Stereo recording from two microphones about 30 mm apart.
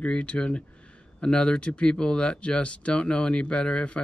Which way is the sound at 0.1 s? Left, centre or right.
Left.